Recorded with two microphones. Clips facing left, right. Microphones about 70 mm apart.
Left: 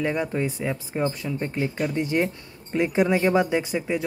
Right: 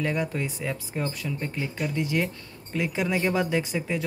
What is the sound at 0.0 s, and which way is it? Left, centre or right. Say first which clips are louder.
Speech: left 3 dB; centre.